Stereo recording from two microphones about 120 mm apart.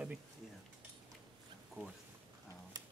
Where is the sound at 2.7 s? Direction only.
30° right (ahead or behind).